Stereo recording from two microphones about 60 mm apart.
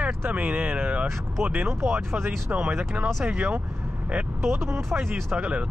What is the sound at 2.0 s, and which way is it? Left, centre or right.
Speech, right.